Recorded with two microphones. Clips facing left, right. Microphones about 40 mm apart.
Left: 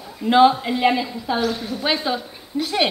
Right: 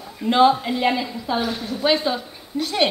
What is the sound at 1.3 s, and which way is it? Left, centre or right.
Speech, centre.